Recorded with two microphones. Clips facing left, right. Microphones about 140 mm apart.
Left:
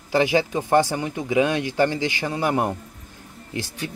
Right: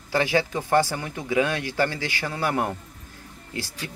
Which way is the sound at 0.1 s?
15° left (ahead or behind).